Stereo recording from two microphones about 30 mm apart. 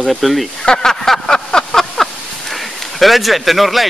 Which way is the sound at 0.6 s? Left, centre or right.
Left.